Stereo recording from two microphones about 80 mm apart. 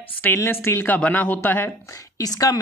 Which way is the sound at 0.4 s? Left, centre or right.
Left.